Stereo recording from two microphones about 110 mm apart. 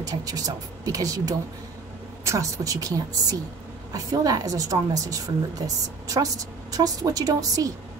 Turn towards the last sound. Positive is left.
turn(degrees=-35)  # may be behind; listen again after turning